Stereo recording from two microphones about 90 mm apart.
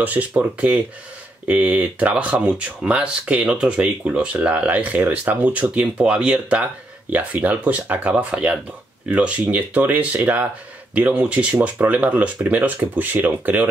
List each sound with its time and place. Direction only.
0.0 s speech: 15° right (ahead or behind)